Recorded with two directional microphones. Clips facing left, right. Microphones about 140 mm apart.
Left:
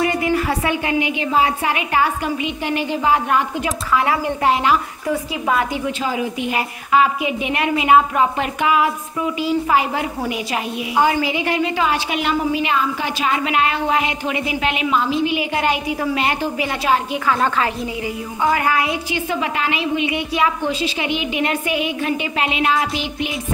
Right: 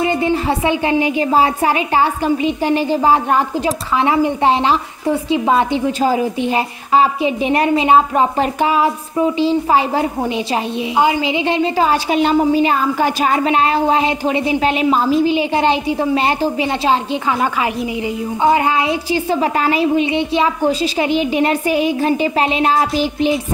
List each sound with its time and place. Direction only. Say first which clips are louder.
0.0 s a woman's voice: right 2 dB; 25° right (ahead or behind)
18.4 s speech: right 4 dB; 25° right (ahead or behind)